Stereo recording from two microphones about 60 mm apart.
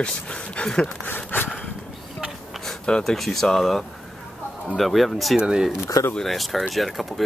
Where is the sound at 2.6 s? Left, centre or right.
Centre.